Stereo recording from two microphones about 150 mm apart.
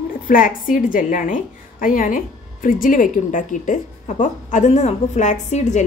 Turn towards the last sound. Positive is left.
turn(degrees=50)  # may be behind; listen again after turning